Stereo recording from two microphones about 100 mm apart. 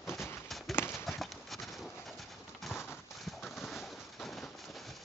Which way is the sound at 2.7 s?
25° left (ahead or behind).